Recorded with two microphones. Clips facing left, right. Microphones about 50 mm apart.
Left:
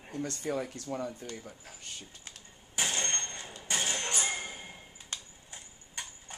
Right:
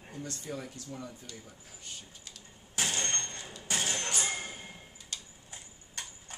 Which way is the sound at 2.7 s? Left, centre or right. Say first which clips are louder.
Even; centre.